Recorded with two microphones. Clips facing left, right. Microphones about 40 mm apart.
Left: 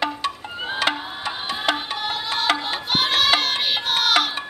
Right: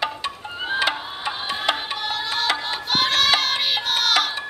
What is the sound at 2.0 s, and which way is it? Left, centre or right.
Music, centre.